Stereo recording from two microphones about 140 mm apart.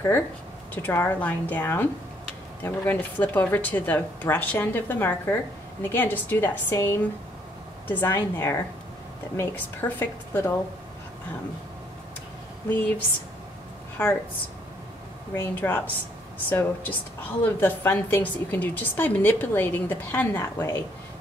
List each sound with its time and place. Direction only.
0.8 s a woman's voice: 15° left (ahead or behind)
12.6 s a woman's voice: 15° left (ahead or behind)
15.3 s a woman's voice: 15° left (ahead or behind)